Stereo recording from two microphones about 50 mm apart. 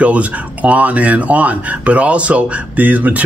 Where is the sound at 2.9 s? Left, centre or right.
Right.